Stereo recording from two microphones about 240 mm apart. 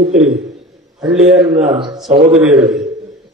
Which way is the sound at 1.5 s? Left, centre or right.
Right.